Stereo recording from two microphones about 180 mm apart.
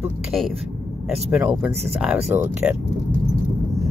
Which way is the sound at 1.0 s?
5° right (ahead or behind).